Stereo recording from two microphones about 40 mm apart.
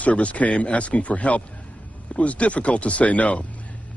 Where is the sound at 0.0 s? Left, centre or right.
Left.